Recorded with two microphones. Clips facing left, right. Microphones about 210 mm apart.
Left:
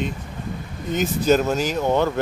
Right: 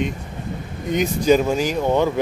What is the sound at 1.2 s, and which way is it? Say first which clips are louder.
Speech: right 2 dB; 10° right (ahead or behind).